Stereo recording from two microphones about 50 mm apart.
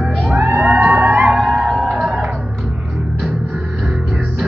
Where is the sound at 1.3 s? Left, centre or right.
Centre.